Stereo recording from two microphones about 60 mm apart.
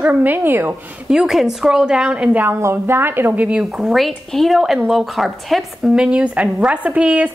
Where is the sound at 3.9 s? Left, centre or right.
Centre.